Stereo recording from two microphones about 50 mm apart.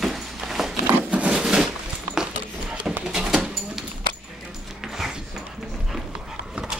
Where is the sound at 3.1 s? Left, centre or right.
Centre.